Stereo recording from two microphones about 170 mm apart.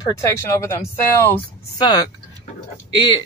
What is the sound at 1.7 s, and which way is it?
Speech, 25° left (ahead or behind).